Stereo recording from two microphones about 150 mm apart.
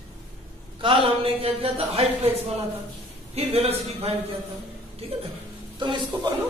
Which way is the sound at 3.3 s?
45° right (ahead or behind).